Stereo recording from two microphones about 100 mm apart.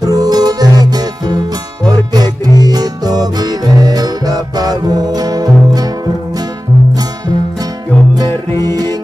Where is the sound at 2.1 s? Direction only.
40° right (ahead or behind).